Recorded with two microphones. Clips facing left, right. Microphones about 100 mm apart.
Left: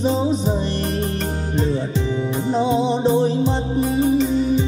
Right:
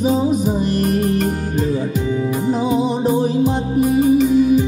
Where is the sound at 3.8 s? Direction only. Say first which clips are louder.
Right 5 dB; 30° left (ahead or behind).